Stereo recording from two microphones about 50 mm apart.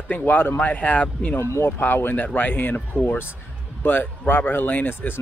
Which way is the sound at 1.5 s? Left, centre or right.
Left.